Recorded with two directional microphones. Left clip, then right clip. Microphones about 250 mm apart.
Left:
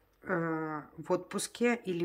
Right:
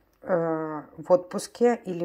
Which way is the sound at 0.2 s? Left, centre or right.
Centre.